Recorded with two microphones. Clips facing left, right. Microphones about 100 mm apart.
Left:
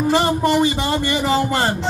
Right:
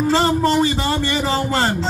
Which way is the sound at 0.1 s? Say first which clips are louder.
Even; 15° left (ahead or behind).